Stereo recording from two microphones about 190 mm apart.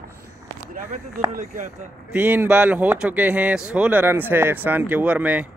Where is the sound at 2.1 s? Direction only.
10° right (ahead or behind).